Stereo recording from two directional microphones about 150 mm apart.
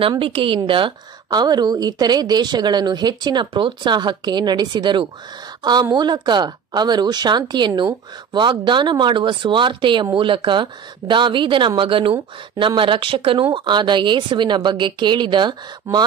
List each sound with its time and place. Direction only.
0.0 s a woman's voice: 35° right (ahead or behind)